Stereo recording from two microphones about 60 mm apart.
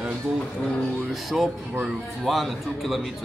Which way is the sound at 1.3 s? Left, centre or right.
Centre.